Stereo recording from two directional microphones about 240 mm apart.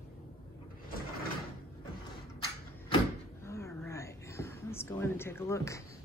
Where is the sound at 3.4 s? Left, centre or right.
Centre.